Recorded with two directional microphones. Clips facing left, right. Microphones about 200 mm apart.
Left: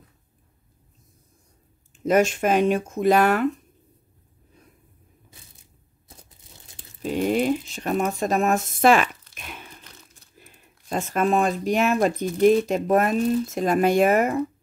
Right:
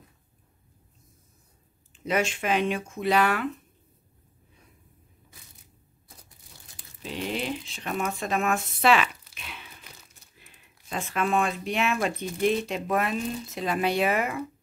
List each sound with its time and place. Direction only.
1.9 s speech: 45° left (ahead or behind)
7.0 s speech: 45° left (ahead or behind)
9.3 s tearing: 45° left (ahead or behind)
10.3 s speech: 45° left (ahead or behind)